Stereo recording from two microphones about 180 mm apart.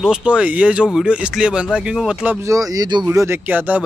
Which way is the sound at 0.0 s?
5° right (ahead or behind).